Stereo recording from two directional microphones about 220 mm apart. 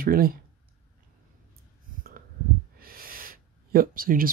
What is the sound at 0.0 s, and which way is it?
Speech, 40° right (ahead or behind).